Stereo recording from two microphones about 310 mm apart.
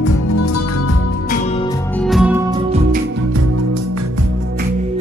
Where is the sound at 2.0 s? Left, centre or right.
Centre.